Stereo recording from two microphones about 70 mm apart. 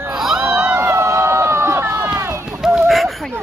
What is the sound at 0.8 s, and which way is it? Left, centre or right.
Run, right.